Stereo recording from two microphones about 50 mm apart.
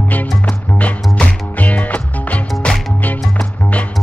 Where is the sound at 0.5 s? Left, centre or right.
Left.